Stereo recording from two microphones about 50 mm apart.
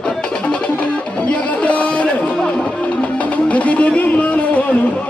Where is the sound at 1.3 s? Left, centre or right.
Left.